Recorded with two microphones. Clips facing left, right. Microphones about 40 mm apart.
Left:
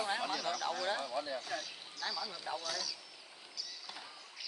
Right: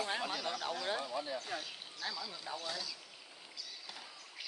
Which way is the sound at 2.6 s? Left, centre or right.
Right.